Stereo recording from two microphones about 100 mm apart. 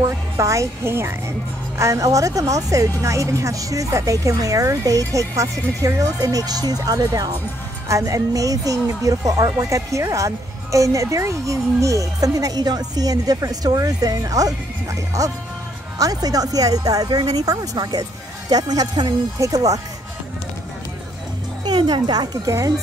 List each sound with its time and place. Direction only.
0.0 s speech: 30° right (ahead or behind)
21.6 s speech: 45° right (ahead or behind)